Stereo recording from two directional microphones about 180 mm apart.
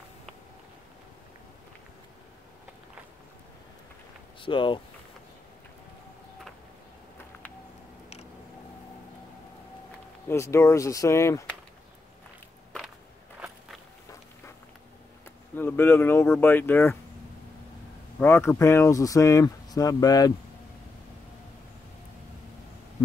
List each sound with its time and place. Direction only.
4.4 s speech: 25° left (ahead or behind)
10.2 s speech: 15° left (ahead or behind)
15.5 s speech: 10° left (ahead or behind)
18.2 s speech: 10° left (ahead or behind)